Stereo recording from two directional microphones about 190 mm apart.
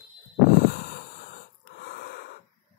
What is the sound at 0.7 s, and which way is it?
Snort, 50° left (ahead or behind).